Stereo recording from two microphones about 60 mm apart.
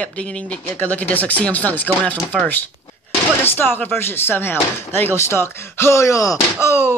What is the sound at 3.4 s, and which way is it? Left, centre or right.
Speech, left.